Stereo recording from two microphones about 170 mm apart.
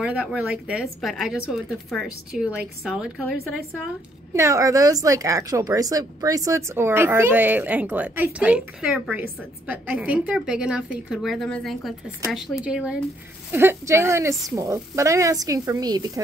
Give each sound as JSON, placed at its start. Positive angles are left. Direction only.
{"t": 0.0, "sound": "a woman's voice", "side_deg": -10}
{"t": 4.3, "sound": "a woman's voice", "side_deg": -15}